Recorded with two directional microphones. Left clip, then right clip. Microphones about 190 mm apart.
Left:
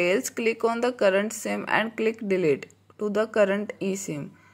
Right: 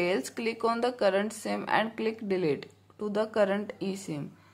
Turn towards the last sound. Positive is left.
turn(degrees=15)  # may be behind; listen again after turning